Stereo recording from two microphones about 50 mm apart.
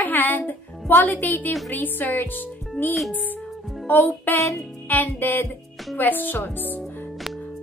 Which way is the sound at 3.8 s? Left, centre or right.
Left.